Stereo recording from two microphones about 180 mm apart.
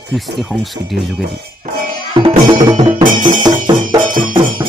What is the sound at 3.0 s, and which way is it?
Music, 45° right (ahead or behind).